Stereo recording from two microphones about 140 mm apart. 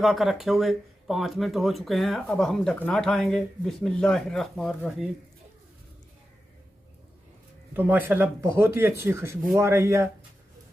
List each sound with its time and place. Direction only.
0.0 s speech: centre (ahead or behind)
7.7 s speech: 15° right (ahead or behind)